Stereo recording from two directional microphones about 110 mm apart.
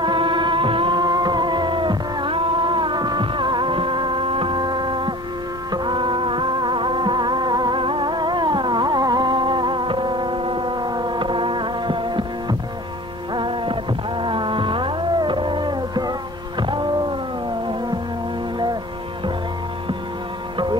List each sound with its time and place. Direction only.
0.0 s music: 50° right (ahead or behind)
13.3 s heart sounds: 50° right (ahead or behind)